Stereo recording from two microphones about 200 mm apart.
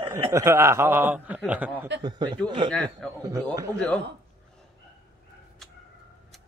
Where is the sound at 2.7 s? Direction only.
5° left (ahead or behind).